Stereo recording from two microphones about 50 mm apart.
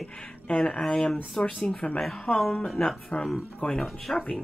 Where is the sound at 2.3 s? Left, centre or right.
Centre.